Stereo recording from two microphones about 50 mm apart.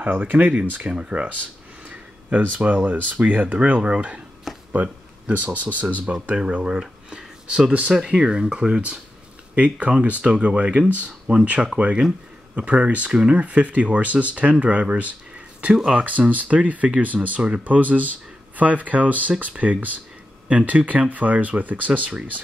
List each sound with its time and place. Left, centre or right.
0.0 s speech: right
1.9 s speech: right
5.4 s speech: right
15.7 s speech: centre
16.0 s speech: right